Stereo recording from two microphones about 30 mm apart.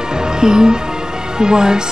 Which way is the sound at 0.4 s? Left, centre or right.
Right.